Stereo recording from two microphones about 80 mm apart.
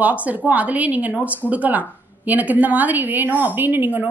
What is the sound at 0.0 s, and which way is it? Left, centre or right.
A woman's voice, centre.